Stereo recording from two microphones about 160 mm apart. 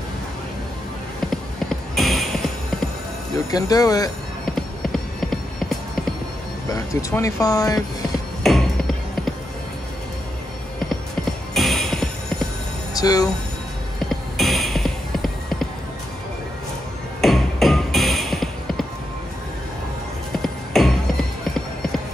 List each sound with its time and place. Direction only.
1.2 s music: centre (ahead or behind)
3.4 s speech: 25° left (ahead or behind)
4.6 s clip-clop: centre (ahead or behind)
6.7 s speech: 20° left (ahead or behind)
8.5 s music: centre (ahead or behind)
11.5 s music: centre (ahead or behind)
12.9 s speech: 25° left (ahead or behind)
13.9 s clip-clop: centre (ahead or behind)
17.2 s music: centre (ahead or behind)
20.4 s music: centre (ahead or behind)